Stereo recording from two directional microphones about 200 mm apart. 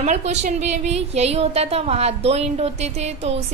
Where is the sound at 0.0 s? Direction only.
35° right (ahead or behind).